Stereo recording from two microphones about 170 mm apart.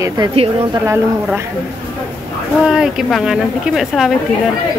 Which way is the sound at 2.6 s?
5° right (ahead or behind).